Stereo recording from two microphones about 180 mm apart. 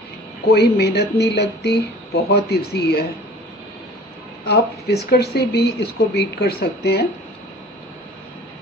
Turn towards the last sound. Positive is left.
turn(degrees=65)  # may be behind; listen again after turning